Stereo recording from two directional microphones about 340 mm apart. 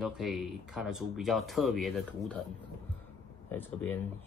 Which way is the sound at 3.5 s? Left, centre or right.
Centre.